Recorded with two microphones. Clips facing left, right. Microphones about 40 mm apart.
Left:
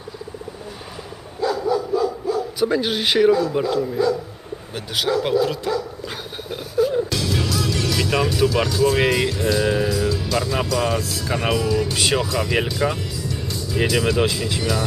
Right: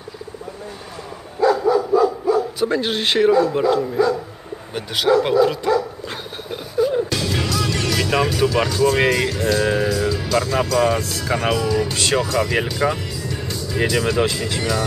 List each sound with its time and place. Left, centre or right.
1.4 s dog: right
2.0 s bow-wow: right
2.6 s speech: centre
3.7 s dog: centre
4.7 s speech: centre
5.2 s dog: centre
6.0 s music: centre; by 7.9 s right
7.9 s speech: centre
13.6 s speech: centre